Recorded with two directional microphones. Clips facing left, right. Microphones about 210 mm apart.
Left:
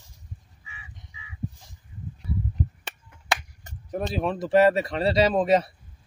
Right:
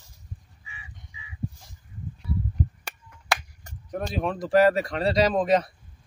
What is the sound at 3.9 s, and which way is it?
Speech, centre (ahead or behind).